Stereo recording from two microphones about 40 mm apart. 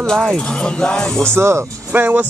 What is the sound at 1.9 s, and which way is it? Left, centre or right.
Speech, right.